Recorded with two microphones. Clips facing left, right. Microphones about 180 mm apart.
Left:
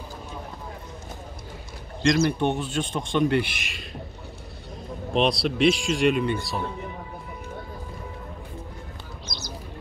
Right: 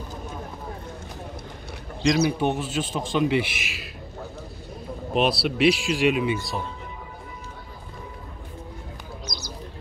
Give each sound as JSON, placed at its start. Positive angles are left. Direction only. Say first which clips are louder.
{"t": 2.0, "sound": "a man's voice", "louder": "even", "side_deg": -5}
{"t": 5.1, "sound": "a man's voice", "louder": "even", "side_deg": -5}